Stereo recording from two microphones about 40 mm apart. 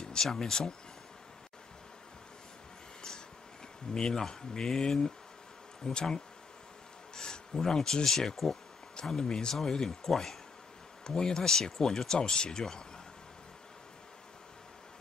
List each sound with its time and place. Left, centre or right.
0.0 s speech: centre
3.9 s speech: centre